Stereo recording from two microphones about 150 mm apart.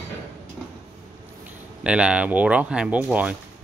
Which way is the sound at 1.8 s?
5° right (ahead or behind).